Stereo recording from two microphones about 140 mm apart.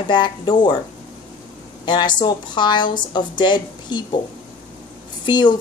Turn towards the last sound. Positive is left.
turn(degrees=35)  # may be behind; listen again after turning